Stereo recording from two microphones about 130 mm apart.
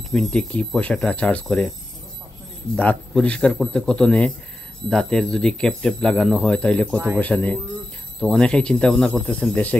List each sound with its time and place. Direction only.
0.1 s speech: 5° left (ahead or behind)
2.7 s speech: 10° left (ahead or behind)